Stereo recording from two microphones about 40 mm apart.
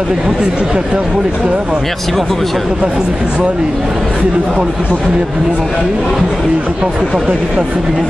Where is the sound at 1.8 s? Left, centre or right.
Centre.